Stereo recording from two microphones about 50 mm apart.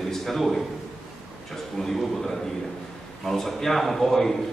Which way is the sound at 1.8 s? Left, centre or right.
Centre.